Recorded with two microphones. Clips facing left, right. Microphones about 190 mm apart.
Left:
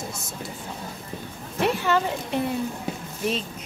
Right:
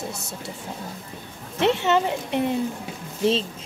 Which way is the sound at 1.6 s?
25° right (ahead or behind).